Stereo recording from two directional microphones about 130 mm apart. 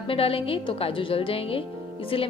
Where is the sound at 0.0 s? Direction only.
45° left (ahead or behind).